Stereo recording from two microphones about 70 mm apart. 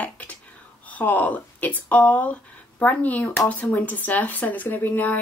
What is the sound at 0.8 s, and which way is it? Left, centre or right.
Speech, left.